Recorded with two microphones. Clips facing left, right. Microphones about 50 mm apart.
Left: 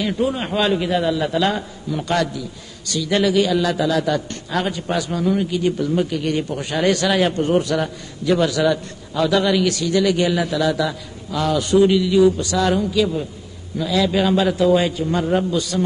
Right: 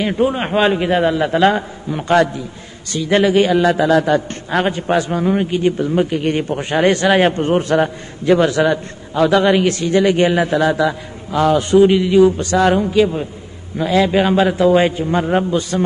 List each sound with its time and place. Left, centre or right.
0.0 s a man's voice: right